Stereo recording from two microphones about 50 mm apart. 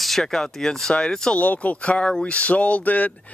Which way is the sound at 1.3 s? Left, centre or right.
Left.